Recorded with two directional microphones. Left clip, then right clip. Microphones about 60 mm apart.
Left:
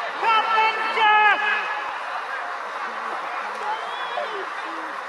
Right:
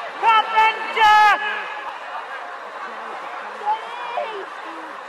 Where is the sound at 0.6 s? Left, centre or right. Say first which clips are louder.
Right 3 dB; right.